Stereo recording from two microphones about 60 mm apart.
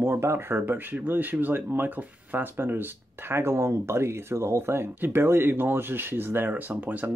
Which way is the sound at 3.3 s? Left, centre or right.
Right.